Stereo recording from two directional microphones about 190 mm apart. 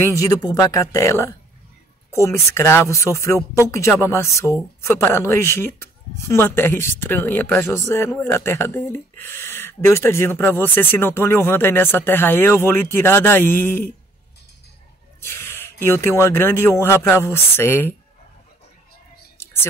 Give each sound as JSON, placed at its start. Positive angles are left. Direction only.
{"t": 0.0, "sound": "speech", "side_deg": 15}
{"t": 15.1, "sound": "speech", "side_deg": 10}
{"t": 19.3, "sound": "whispering", "side_deg": 10}